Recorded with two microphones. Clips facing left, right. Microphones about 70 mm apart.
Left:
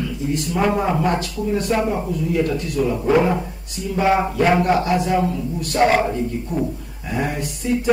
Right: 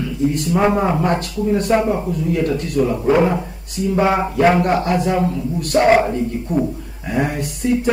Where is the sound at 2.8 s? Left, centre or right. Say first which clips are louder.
Right 3 dB; right.